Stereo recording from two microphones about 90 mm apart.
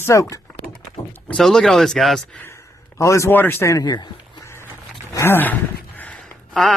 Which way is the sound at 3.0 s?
35° left (ahead or behind).